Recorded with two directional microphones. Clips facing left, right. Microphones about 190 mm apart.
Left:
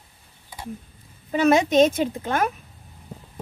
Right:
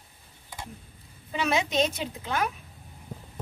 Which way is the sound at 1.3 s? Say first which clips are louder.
Left 9 dB; 50° left (ahead or behind).